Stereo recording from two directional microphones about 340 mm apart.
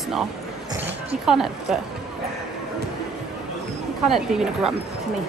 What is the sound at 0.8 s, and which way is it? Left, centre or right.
Speech, centre.